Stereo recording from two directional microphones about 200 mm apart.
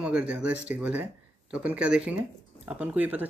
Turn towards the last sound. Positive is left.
turn(degrees=-10)  # may be behind; listen again after turning